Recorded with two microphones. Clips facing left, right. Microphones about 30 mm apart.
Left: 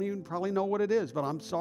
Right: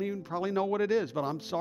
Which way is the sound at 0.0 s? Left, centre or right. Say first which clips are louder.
Even; right.